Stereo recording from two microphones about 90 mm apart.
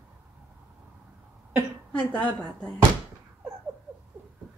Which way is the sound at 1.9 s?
15° left (ahead or behind).